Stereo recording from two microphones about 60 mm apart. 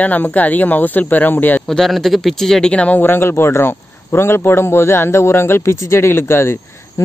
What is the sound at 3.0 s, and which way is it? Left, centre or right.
A man's voice, left.